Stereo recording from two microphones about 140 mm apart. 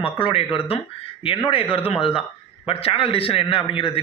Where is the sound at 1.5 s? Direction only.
40° left (ahead or behind).